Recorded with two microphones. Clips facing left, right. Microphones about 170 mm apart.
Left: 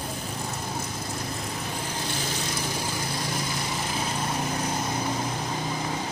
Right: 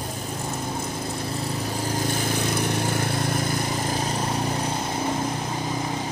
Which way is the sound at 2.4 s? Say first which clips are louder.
Right 6 dB; 60° right (ahead or behind).